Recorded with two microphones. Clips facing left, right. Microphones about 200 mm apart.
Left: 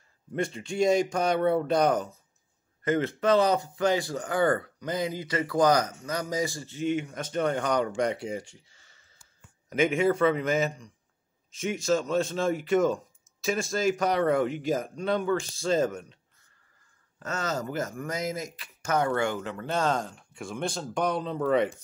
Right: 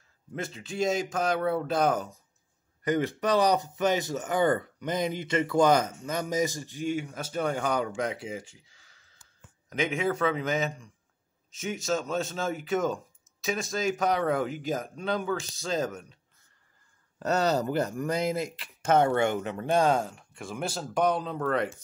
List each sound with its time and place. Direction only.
0.4 s speech: centre (ahead or behind)
2.8 s speech: 15° right (ahead or behind)
17.2 s speech: 35° right (ahead or behind); by 21.7 s centre (ahead or behind)